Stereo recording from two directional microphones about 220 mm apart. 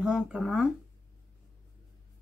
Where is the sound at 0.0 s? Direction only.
5° right (ahead or behind).